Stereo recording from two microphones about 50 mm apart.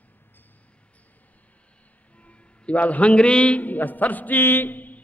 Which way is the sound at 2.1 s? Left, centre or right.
Left.